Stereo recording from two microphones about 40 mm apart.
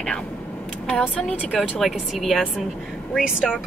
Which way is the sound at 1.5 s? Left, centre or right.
Centre.